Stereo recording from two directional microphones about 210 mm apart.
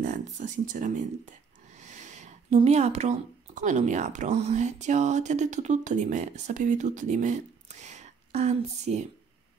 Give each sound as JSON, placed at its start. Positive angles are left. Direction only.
{"t": 0.0, "sound": "speech", "side_deg": -35}